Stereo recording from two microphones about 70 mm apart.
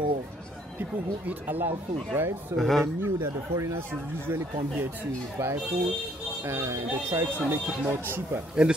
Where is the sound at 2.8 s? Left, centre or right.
Right.